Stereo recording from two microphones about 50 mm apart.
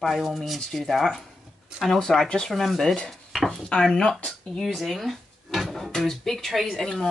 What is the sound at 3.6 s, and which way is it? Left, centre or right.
Speech, centre.